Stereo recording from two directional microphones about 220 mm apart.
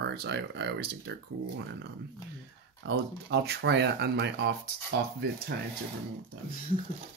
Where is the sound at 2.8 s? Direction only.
50° right (ahead or behind).